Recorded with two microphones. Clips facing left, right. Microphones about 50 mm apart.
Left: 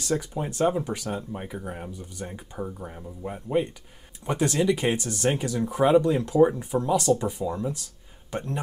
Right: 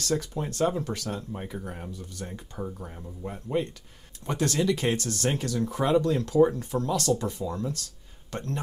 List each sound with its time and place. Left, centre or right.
0.0 s speech: centre